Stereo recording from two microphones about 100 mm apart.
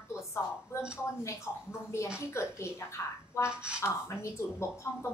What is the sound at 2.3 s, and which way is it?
A woman's voice, 25° left (ahead or behind).